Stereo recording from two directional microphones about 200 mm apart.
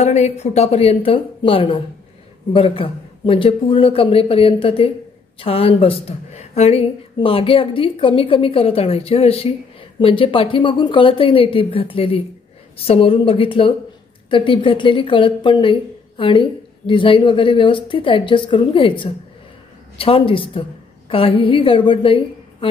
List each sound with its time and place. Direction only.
0.0 s a woman's voice: 35° left (ahead or behind)